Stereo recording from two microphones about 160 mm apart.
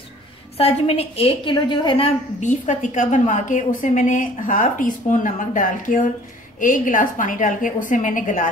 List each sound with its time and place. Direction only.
0.6 s a woman's voice: 40° left (ahead or behind)
2.4 s a woman's voice: 50° left (ahead or behind)